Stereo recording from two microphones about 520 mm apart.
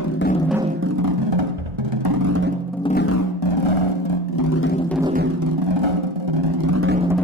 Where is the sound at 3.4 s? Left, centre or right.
Left.